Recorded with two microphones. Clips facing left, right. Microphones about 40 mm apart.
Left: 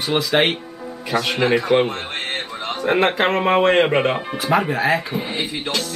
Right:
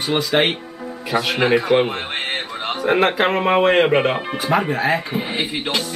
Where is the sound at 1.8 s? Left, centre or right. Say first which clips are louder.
Right 2 dB; centre.